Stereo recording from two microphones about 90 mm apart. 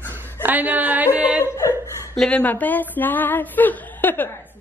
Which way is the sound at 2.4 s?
20° left (ahead or behind).